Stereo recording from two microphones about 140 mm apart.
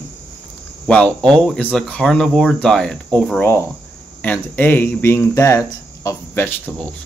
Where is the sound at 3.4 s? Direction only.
20° left (ahead or behind).